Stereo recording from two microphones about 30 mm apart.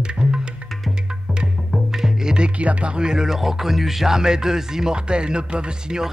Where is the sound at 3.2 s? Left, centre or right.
Centre.